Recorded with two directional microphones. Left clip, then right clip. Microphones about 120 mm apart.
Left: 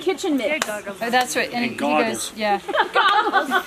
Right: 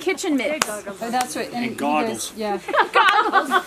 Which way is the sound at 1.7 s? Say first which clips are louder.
Right 1 dB; 15° right (ahead or behind).